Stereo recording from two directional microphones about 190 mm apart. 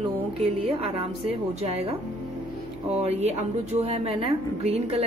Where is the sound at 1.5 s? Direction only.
35° right (ahead or behind).